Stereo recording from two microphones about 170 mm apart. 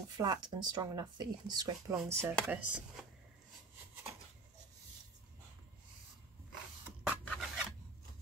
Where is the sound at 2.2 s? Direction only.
15° right (ahead or behind).